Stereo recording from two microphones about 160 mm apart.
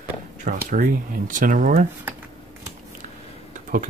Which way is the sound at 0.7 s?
55° right (ahead or behind).